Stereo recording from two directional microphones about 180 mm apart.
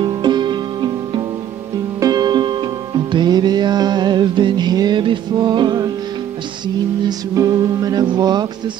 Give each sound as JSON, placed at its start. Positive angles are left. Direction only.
{"t": 0.0, "sound": "music", "side_deg": -25}
{"t": 7.1, "sound": "music", "side_deg": -20}